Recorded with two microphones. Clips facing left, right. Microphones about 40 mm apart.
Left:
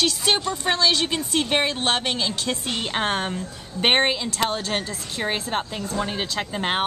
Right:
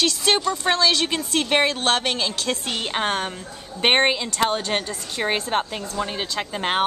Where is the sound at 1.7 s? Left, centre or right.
Centre.